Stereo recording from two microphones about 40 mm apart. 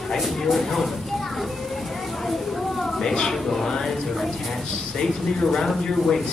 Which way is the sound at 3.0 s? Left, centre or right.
Centre.